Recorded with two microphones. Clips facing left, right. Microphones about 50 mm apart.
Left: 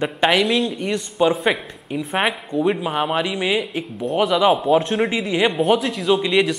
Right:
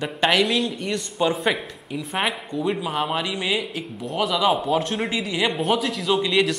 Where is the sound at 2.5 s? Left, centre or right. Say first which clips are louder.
Left 4 dB; left.